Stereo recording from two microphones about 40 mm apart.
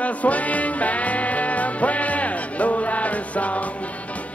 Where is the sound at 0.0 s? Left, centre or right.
Left.